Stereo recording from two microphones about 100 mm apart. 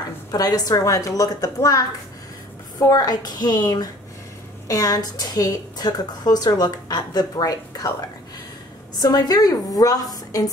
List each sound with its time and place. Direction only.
0.3 s a woman's voice: 40° left (ahead or behind)
9.0 s a woman's voice: 40° left (ahead or behind)